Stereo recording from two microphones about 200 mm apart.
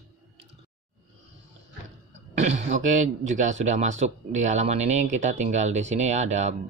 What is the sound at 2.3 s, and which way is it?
Speech, 35° right (ahead or behind).